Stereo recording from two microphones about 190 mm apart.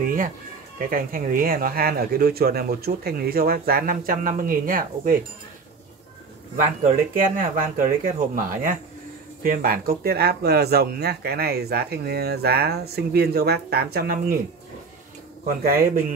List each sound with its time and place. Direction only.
0.7 s speech: 50° right (ahead or behind)
6.5 s speech: 40° right (ahead or behind)
9.4 s speech: 50° right (ahead or behind)
15.4 s speech: 50° right (ahead or behind)